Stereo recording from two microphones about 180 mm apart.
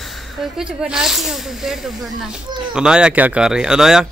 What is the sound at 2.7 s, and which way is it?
Speech, 5° right (ahead or behind).